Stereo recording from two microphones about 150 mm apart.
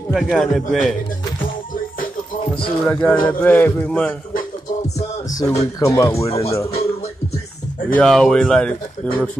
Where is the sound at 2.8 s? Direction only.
10° left (ahead or behind).